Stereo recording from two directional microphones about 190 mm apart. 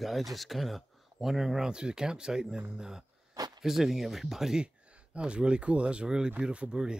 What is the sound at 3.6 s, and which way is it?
Speech, centre (ahead or behind).